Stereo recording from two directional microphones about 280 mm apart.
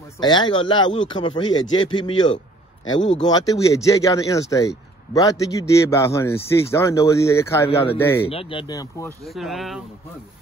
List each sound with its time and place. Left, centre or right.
0.2 s speech: centre
8.3 s speech: centre
9.2 s speech: centre